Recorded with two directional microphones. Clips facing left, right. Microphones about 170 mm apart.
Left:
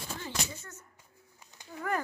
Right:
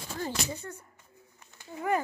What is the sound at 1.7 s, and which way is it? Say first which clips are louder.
Speech: right 4 dB; 15° right (ahead or behind).